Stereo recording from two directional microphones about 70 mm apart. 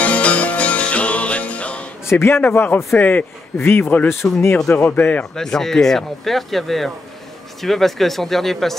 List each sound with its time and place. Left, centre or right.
0.0 s music: centre
2.0 s a man's voice: left
4.2 s speech: left
4.6 s speech: left
5.3 s speech: centre